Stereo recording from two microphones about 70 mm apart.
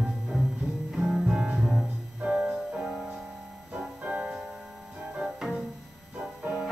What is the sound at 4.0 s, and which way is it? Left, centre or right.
Music, centre.